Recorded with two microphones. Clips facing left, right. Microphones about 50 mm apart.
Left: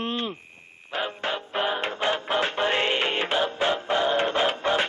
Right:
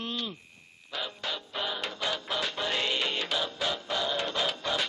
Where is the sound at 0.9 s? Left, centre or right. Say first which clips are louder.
Left 7 dB; left.